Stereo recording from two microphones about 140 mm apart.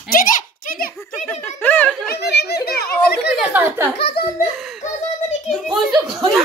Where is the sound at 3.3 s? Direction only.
15° right (ahead or behind).